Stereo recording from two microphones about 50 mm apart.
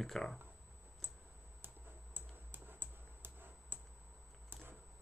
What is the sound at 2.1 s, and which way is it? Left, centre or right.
Computer keyboard, right.